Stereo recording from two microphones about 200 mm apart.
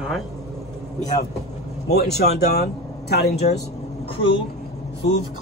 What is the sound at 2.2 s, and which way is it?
Speech, 55° left (ahead or behind).